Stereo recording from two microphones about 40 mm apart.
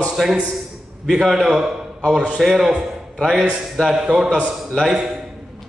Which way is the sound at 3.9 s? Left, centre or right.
Centre.